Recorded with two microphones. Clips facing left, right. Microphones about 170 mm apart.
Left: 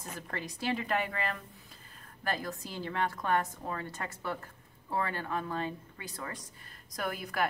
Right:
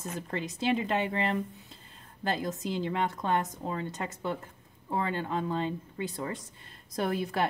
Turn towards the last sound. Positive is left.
turn(degrees=-25)  # may be behind; listen again after turning